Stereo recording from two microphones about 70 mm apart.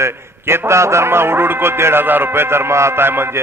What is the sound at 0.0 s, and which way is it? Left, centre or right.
A man's voice, right.